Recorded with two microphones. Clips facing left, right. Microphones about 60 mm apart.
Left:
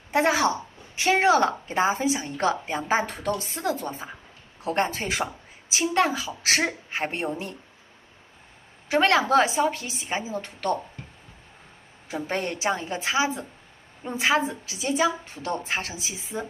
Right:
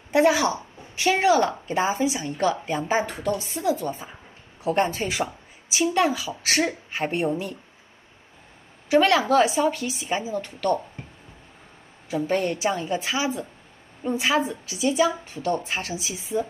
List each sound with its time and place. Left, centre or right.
0.1 s a woman's voice: left
8.8 s a woman's voice: left
11.0 s a sound: right
12.1 s a woman's voice: left